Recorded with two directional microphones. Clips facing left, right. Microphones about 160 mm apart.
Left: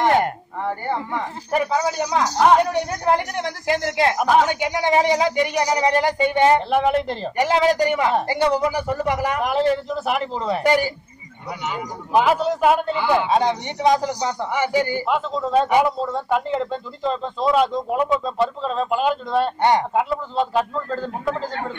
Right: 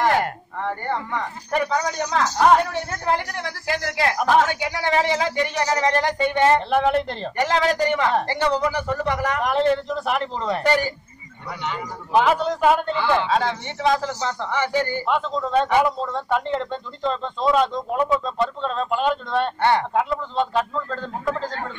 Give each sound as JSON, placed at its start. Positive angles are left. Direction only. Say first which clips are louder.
{"t": 0.0, "sound": "a sound", "louder": "left 2 dB", "side_deg": 20}
{"t": 0.7, "sound": "speech", "louder": "left 1 dB", "side_deg": 10}
{"t": 4.2, "sound": "a man's voice", "louder": "even", "side_deg": 0}
{"t": 4.5, "sound": "a man's voice", "louder": "left 3 dB", "side_deg": 20}
{"t": 19.6, "sound": "a man's voice", "louder": "even", "side_deg": 15}